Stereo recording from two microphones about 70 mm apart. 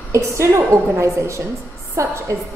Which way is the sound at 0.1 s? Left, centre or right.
Right.